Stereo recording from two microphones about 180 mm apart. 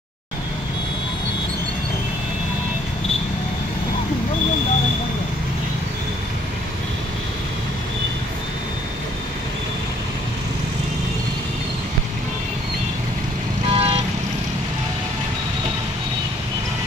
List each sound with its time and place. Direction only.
13.7 s vehicle: 30° right (ahead or behind)